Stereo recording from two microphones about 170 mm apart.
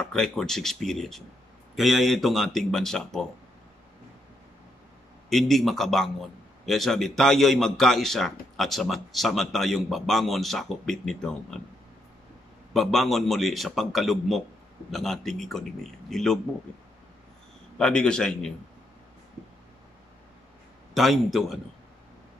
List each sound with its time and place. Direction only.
0.0 s a man's voice: 5° left (ahead or behind)
5.3 s a man's voice: centre (ahead or behind)
12.7 s a man's voice: centre (ahead or behind)
17.7 s a man's voice: 5° left (ahead or behind)
20.9 s a man's voice: centre (ahead or behind)